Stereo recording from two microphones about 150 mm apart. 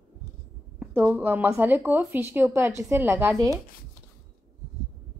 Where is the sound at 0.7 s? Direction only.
10° right (ahead or behind).